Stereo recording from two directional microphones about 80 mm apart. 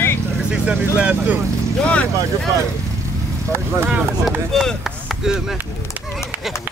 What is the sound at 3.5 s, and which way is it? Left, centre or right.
Speech, right.